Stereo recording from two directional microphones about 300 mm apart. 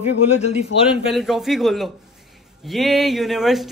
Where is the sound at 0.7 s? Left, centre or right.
Left.